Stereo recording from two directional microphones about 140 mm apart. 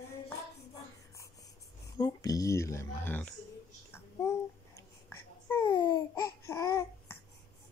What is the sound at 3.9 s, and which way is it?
Babbling, 20° left (ahead or behind).